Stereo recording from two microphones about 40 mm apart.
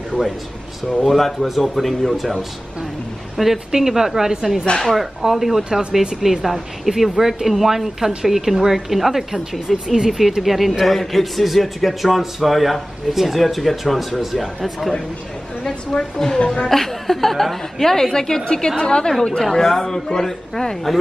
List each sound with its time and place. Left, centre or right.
1.0 s a man's voice: centre
3.4 s a man's voice: centre
5.6 s speech: right
6.2 s a man's voice: centre
15.6 s a woman's voice: centre
19.5 s a woman's voice: centre